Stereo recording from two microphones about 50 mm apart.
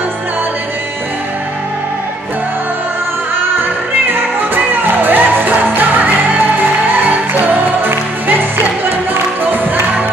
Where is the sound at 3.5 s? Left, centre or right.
Right.